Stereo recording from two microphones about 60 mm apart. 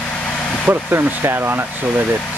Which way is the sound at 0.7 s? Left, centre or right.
Right.